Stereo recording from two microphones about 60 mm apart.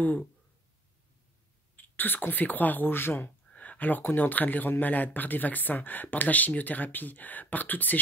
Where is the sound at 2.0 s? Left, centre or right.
Left.